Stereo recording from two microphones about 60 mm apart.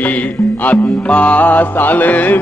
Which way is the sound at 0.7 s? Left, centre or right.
Left.